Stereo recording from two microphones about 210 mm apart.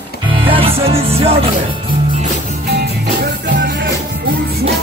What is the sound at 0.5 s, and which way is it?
Music, 25° right (ahead or behind).